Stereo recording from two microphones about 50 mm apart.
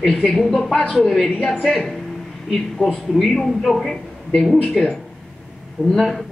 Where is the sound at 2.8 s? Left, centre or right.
Centre.